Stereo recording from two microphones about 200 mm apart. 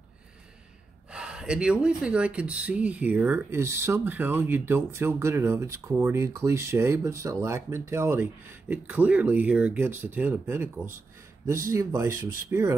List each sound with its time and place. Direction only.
1.1 s speech: 5° right (ahead or behind)